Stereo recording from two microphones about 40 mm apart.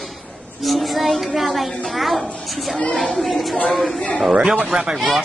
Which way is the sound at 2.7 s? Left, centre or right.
Left.